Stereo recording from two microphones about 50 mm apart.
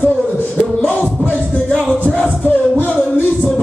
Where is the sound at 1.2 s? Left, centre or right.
Left.